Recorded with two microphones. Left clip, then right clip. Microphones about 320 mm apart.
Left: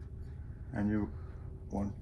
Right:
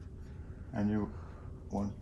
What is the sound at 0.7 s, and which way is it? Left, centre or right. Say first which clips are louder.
Speech: even; centre.